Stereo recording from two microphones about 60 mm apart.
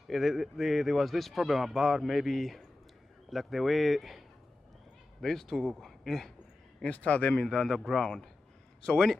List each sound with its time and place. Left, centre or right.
0.1 s a man's voice: centre
5.2 s a man's voice: centre
6.8 s speech: left
7.4 s a man's voice: centre